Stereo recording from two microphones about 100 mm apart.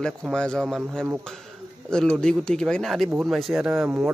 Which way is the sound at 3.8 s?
20° right (ahead or behind).